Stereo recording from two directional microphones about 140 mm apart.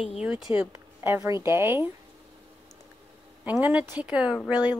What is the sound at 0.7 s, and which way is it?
A woman's voice, 20° right (ahead or behind).